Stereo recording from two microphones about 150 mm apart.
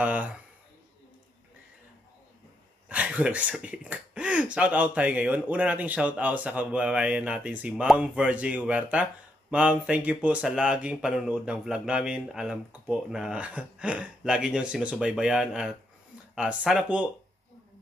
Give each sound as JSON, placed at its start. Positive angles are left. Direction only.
{"t": 0.0, "sound": "speech", "side_deg": -10}
{"t": 2.9, "sound": "speech", "side_deg": -10}